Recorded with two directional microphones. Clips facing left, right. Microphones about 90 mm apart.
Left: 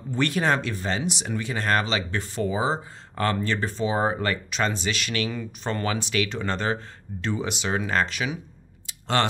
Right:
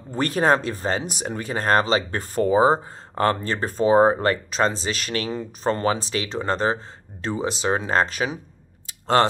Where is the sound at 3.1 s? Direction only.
35° right (ahead or behind).